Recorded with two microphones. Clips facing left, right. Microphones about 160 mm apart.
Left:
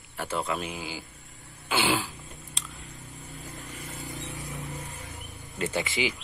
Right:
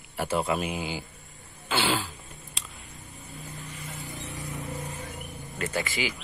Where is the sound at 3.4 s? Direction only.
40° left (ahead or behind).